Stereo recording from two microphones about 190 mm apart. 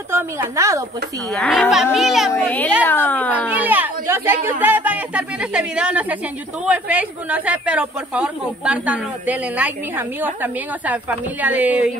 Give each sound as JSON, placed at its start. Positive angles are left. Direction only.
{"t": 0.1, "sound": "speech", "side_deg": -15}
{"t": 1.3, "sound": "a child's voice", "side_deg": 5}
{"t": 3.4, "sound": "speech", "side_deg": -10}